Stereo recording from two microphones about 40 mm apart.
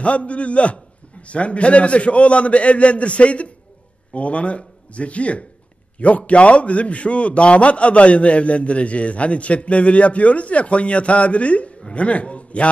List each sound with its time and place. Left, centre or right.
0.0 s a man's voice: left